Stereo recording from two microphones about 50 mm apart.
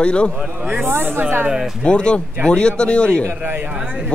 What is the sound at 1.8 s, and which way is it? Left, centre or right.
Speech, centre.